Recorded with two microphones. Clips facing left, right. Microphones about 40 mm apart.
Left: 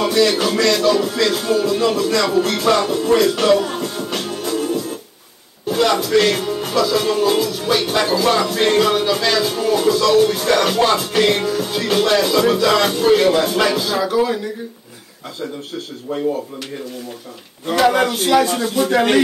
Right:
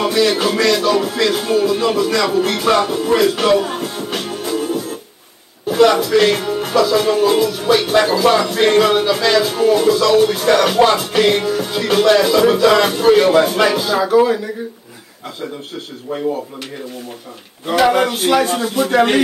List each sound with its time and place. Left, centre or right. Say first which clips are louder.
0.0 s music: right 1 dB; centre
5.7 s speech: right 4 dB; centre
16.1 s speech: even; right
17.6 s speech: right 1 dB; centre